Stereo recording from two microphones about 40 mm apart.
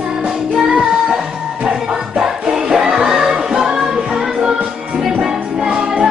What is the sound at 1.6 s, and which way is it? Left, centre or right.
Music, centre.